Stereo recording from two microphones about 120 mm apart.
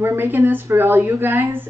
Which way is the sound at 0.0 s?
15° right (ahead or behind).